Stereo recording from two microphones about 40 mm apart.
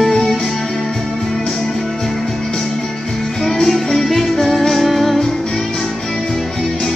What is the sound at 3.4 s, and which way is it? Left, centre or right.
Music, centre.